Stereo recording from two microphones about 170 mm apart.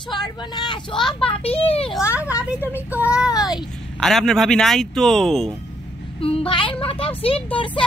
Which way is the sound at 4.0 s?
Centre (ahead or behind).